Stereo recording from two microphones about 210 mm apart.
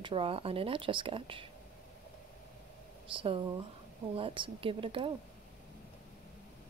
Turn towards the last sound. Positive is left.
turn(degrees=-25)  # may be behind; listen again after turning